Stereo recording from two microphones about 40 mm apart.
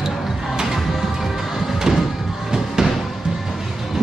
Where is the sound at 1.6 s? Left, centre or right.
Centre.